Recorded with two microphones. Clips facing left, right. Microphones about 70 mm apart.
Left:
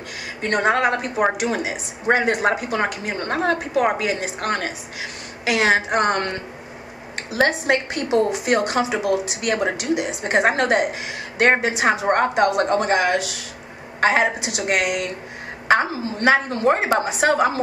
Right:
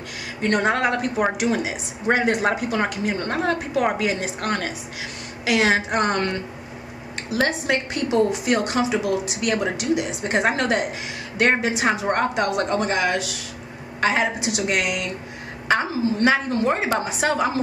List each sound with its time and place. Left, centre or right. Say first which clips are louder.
0.4 s speech: left 1 dB; left
1.1 s a woman's voice: left 1 dB; left